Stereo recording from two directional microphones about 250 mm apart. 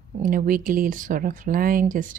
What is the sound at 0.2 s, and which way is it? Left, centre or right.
Speech, right.